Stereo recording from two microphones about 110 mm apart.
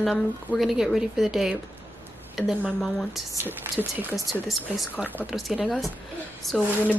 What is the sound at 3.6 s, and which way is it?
Speech, 20° right (ahead or behind).